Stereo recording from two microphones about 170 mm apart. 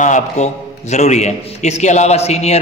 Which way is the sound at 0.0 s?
45° left (ahead or behind).